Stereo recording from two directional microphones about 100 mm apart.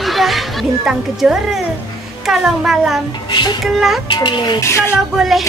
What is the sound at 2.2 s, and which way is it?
Speech, 5° right (ahead or behind).